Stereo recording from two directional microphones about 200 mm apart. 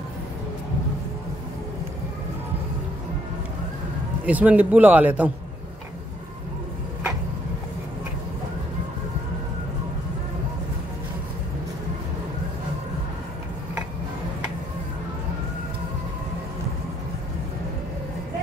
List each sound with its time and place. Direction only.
4.3 s a man's voice: 5° right (ahead or behind)